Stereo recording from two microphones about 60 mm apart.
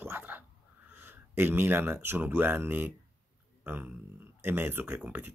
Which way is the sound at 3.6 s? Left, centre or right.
Right.